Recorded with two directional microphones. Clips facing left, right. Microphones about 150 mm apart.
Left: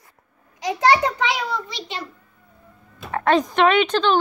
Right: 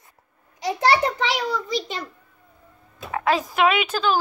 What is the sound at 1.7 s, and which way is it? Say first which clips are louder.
Speech: right 5 dB; 45° right (ahead or behind).